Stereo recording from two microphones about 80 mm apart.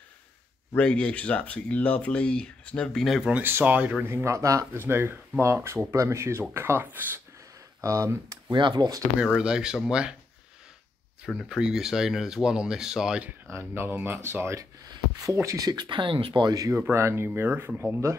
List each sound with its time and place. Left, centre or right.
0.7 s speech: centre
3.2 s speech: centre
3.4 s speech: right
4.1 s speech: right
4.8 s speech: right
7.8 s speech: right
8.5 s speech: right
9.2 s speech: centre
11.2 s speech: centre
13.5 s speech: right
14.9 s speech: right
16.9 s speech: right